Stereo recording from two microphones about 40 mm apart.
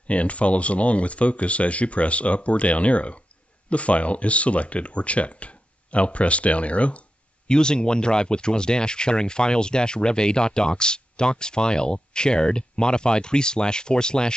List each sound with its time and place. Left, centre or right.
0.1 s speech: left
7.4 s speech: left